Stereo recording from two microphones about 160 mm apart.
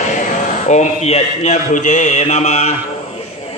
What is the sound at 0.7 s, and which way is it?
Speech, 45° left (ahead or behind).